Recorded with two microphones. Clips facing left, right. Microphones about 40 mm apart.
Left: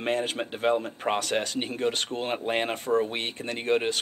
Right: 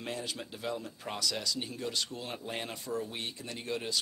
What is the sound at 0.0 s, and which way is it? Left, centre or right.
Speech, left.